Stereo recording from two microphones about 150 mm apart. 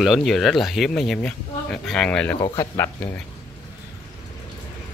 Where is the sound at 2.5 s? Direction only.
20° left (ahead or behind).